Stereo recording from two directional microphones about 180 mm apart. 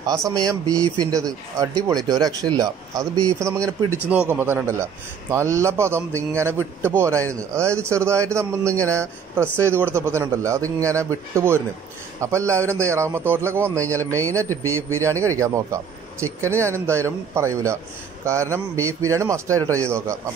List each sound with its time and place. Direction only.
0.0 s a man's voice: 20° right (ahead or behind)